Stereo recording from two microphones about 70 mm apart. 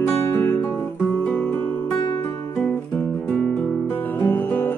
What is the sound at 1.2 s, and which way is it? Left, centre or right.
Music, left.